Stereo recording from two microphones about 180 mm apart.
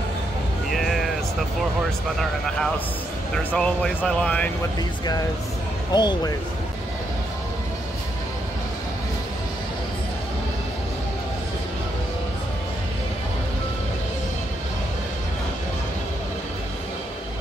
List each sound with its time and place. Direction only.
0.7 s a sound: centre (ahead or behind)
3.5 s speech: 5° left (ahead or behind)
5.9 s speech: 25° left (ahead or behind)